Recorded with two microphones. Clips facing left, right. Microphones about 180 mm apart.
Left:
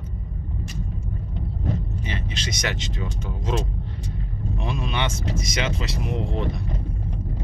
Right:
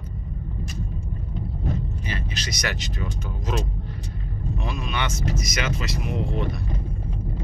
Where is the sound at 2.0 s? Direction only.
25° left (ahead or behind).